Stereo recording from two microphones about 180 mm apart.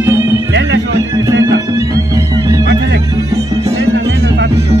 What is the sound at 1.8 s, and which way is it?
Music, 20° right (ahead or behind).